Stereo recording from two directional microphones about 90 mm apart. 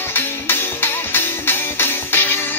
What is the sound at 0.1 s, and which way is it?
Music, 25° left (ahead or behind).